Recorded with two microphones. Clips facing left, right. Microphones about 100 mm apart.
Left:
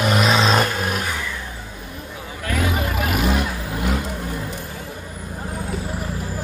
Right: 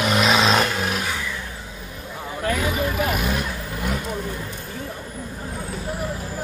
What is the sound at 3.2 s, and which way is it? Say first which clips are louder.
Vehicle: left 4 dB; 80° left.